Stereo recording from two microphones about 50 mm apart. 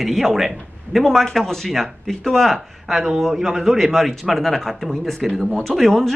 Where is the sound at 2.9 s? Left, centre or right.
Centre.